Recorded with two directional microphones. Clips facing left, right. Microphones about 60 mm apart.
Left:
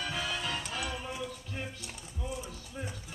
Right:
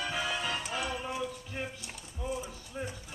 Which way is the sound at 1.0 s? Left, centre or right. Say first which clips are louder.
Right 3 dB; centre.